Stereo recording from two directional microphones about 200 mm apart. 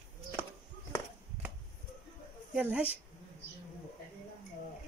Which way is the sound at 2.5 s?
5° right (ahead or behind).